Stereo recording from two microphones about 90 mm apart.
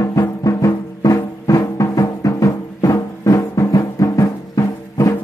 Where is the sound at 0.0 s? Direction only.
35° left (ahead or behind).